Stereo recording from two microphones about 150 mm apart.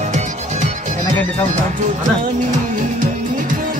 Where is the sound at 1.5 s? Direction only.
55° right (ahead or behind).